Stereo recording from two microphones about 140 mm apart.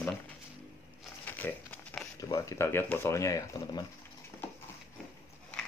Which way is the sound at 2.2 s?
25° left (ahead or behind).